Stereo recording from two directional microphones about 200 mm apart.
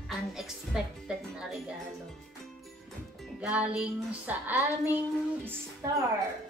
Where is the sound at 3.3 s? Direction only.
5° right (ahead or behind).